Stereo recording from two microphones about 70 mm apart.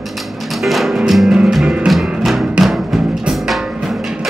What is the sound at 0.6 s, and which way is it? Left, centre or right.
Music, centre.